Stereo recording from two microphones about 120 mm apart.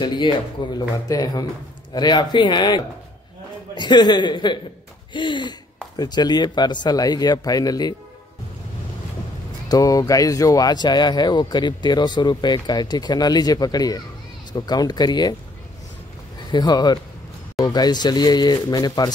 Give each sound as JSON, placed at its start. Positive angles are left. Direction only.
{"t": 0.0, "sound": "speech", "side_deg": 40}
{"t": 9.7, "sound": "speech", "side_deg": 30}
{"t": 16.5, "sound": "speech", "side_deg": 35}